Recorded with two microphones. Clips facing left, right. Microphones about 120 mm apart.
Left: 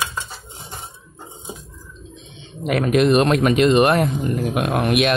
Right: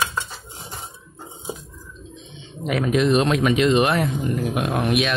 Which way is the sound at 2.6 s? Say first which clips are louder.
Left 3 dB; 60° left (ahead or behind).